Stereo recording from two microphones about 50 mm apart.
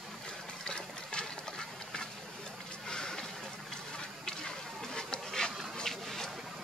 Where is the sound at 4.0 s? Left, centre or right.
Centre.